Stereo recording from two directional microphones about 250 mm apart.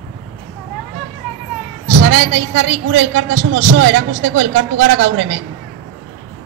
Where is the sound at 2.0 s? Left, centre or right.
Right.